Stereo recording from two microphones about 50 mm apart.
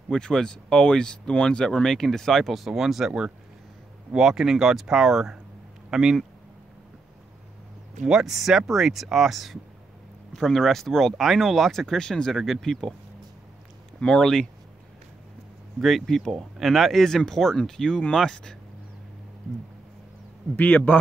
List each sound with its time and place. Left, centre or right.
0.1 s speech: centre
3.1 s speech: centre
8.1 s speech: centre
13.9 s speech: centre
15.8 s speech: centre
20.5 s a man's voice: left